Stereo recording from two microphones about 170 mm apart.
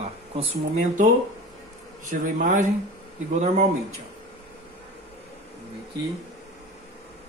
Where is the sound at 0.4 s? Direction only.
40° right (ahead or behind).